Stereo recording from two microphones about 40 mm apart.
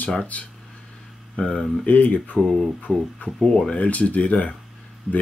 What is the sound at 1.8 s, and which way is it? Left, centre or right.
Speech, left.